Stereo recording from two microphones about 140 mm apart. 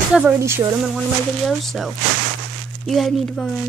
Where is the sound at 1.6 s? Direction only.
Centre (ahead or behind).